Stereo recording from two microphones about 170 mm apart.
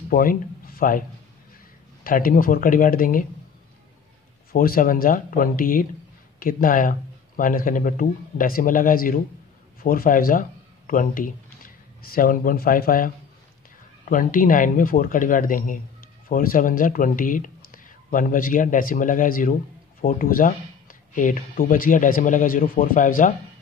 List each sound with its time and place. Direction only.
0.1 s speech: 55° left (ahead or behind)
2.0 s speech: 55° left (ahead or behind)
4.5 s speech: 60° left (ahead or behind)